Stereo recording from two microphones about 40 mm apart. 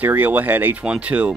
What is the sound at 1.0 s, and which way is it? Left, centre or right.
Speech, right.